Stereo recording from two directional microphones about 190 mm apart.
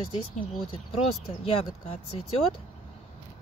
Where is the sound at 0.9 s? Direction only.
30° left (ahead or behind).